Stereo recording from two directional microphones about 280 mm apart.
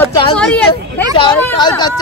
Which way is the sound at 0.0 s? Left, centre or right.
Centre.